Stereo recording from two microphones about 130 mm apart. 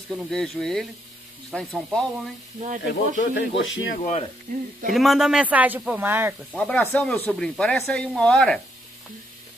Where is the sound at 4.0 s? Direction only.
70° left (ahead or behind).